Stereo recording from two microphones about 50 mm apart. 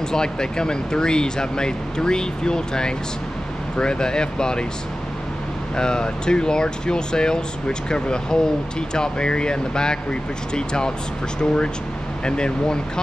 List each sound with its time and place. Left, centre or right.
0.1 s speech: centre
5.8 s speech: centre